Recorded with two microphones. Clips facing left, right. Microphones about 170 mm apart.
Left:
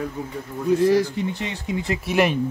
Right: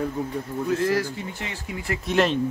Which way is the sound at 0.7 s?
15° left (ahead or behind).